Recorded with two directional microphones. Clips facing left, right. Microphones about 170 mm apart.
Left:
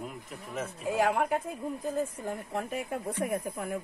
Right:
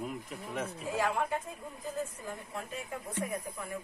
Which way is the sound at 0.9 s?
65° left (ahead or behind).